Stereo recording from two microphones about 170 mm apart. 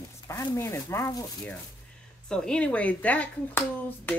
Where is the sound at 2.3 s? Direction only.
5° left (ahead or behind).